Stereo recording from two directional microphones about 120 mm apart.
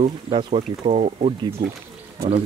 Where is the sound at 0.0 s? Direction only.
50° right (ahead or behind).